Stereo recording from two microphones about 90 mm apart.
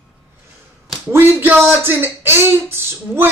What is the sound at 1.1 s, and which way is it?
Speech, 25° right (ahead or behind).